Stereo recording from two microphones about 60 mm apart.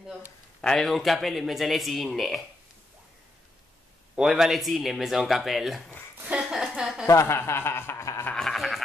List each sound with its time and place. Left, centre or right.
0.6 s speech: centre
4.2 s a woman's voice: centre
7.1 s speech: left
8.4 s sheep: centre